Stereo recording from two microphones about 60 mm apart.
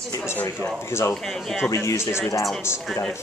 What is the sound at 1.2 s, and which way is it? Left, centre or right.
Speech, centre.